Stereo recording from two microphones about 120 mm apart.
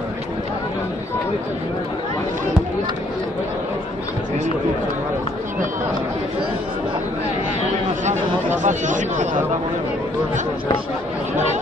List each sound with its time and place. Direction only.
8.0 s chatter: 85° right